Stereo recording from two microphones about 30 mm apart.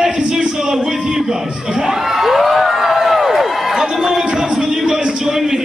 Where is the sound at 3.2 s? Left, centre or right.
Centre.